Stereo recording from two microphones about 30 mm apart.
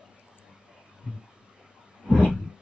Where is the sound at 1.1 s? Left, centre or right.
Centre.